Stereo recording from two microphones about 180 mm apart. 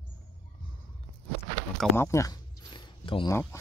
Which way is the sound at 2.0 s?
15° left (ahead or behind).